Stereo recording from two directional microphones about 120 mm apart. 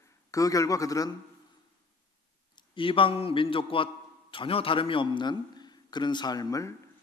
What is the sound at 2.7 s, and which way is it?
A man's voice, 45° left (ahead or behind).